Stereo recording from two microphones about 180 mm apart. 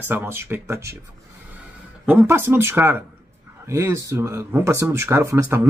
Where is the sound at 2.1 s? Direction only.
10° right (ahead or behind).